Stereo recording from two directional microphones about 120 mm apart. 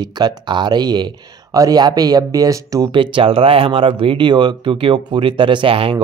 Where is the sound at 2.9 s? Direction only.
45° right (ahead or behind).